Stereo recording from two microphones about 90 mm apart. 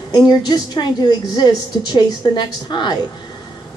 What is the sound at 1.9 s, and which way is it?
A woman's voice, 55° left (ahead or behind).